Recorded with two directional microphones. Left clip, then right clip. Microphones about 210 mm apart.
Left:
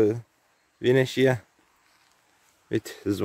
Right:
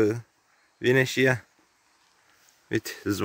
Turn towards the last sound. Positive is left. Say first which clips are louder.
# even
turn(degrees=5)  # may be behind; listen again after turning